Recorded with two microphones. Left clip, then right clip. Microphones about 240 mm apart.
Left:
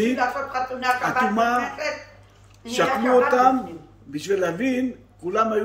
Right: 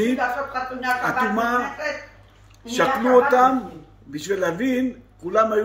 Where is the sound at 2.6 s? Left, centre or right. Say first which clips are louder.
Right 1 dB; centre.